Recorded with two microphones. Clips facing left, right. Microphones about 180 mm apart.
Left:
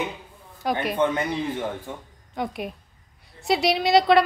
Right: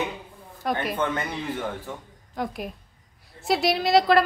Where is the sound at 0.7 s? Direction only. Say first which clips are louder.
Left 1 dB; centre (ahead or behind).